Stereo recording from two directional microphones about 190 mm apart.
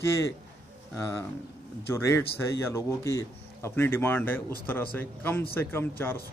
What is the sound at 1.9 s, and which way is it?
Speech, 15° left (ahead or behind).